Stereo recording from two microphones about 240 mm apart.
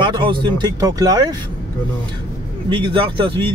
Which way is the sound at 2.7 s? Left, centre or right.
Centre.